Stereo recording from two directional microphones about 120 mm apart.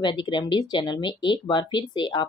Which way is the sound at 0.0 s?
40° left (ahead or behind).